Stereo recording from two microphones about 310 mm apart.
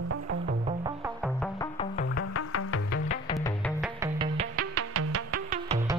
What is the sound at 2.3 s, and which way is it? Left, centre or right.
Music, left.